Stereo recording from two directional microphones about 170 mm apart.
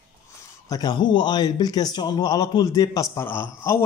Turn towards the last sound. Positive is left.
turn(degrees=15)  # may be behind; listen again after turning